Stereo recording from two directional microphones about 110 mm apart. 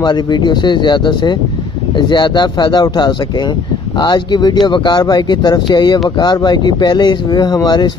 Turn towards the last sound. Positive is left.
turn(degrees=40)  # may be behind; listen again after turning